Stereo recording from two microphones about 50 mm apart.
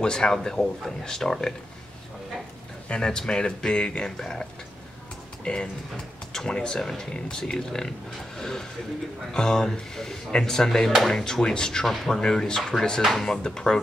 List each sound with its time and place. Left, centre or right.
0.0 s speech: centre
2.9 s speech: centre